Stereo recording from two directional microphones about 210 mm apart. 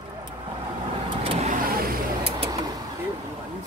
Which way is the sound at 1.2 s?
30° right (ahead or behind).